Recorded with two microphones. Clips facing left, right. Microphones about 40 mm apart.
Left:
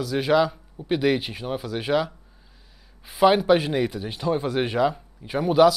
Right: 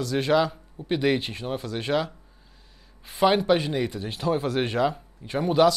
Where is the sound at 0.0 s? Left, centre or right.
Centre.